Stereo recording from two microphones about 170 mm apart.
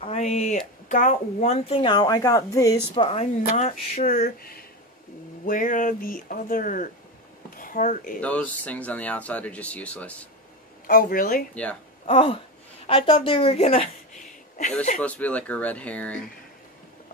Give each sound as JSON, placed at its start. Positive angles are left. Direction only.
{"t": 0.0, "sound": "a sound", "side_deg": 40}
{"t": 0.8, "sound": "a woman's voice", "side_deg": 50}
{"t": 3.4, "sound": "speech", "side_deg": 45}
{"t": 8.2, "sound": "speech", "side_deg": 10}
{"t": 10.9, "sound": "speech", "side_deg": 60}
{"t": 11.5, "sound": "speech", "side_deg": 5}
{"t": 12.1, "sound": "a woman's voice", "side_deg": 40}
{"t": 15.0, "sound": "speech", "side_deg": 10}